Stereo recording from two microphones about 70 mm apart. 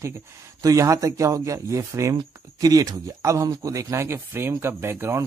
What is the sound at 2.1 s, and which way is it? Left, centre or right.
Speech, right.